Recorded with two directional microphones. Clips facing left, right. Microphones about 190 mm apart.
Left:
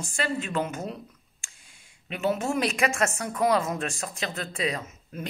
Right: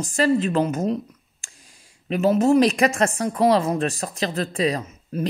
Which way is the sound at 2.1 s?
40° right (ahead or behind).